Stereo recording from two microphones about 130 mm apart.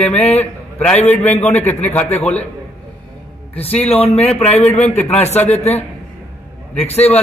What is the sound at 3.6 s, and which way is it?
A man's voice, 50° left (ahead or behind).